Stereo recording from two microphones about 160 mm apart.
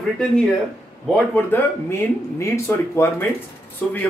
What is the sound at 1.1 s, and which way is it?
Speech, 10° left (ahead or behind).